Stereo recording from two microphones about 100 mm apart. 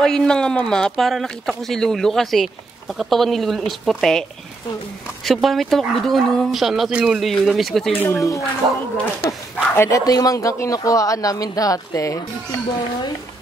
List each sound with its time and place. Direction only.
0.0 s speech: 5° left (ahead or behind)
7.9 s speech: 20° left (ahead or behind)
8.2 s speech: 30° left (ahead or behind)
9.8 s speech: 35° left (ahead or behind)